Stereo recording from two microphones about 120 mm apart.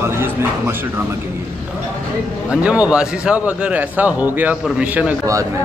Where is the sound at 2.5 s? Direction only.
10° right (ahead or behind).